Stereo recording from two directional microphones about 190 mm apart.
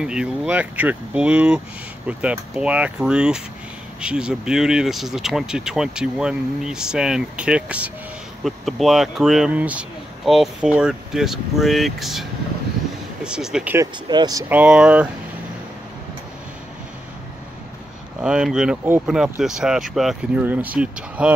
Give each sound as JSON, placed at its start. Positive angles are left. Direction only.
{"t": 0.0, "sound": "speech", "side_deg": -5}
{"t": 13.7, "sound": "speech", "side_deg": -20}
{"t": 14.5, "sound": "speech", "side_deg": -5}
{"t": 18.2, "sound": "speech", "side_deg": -5}